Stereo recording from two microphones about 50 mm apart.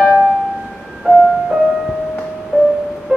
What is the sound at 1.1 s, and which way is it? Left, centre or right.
Music, right.